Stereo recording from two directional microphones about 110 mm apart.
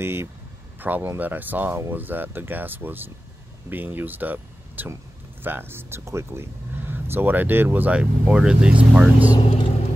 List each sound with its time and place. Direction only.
0.0 s speech: 20° right (ahead or behind)